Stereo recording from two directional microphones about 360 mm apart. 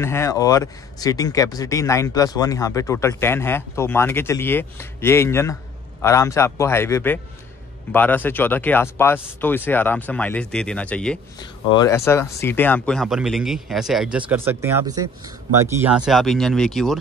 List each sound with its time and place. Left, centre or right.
0.0 s speech: centre